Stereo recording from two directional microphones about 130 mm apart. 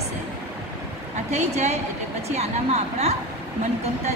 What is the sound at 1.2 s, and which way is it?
A woman's voice, 60° right (ahead or behind).